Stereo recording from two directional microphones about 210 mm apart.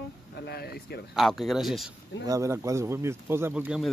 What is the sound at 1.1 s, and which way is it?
Speech, centre (ahead or behind).